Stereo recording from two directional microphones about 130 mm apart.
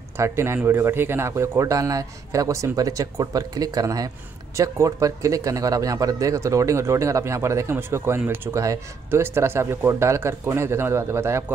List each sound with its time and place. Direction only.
0.2 s speech: 20° right (ahead or behind)